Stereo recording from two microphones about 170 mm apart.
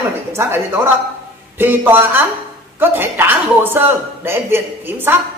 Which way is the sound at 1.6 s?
10° right (ahead or behind).